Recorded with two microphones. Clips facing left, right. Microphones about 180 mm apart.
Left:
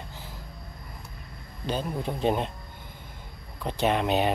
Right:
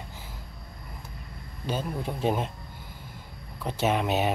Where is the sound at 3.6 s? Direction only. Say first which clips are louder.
Left 1 dB; 5° right (ahead or behind).